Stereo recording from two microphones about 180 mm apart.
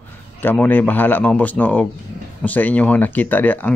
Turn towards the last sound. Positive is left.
turn(degrees=10)  # may be behind; listen again after turning